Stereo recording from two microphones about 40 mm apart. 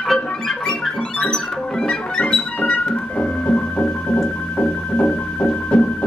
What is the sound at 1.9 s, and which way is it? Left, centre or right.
Music, left.